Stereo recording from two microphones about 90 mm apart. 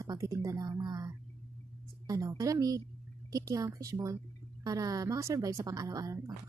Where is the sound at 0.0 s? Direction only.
35° right (ahead or behind).